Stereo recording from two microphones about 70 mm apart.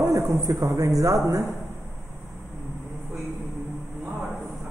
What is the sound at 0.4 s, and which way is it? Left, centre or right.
Speech, right.